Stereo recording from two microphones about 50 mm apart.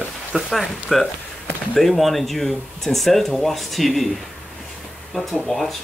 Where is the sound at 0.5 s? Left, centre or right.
Centre.